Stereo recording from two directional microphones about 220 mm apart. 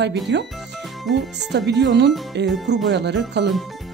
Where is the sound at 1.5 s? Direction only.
50° right (ahead or behind).